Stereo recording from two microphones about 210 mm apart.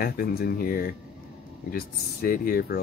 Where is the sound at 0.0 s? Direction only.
45° left (ahead or behind).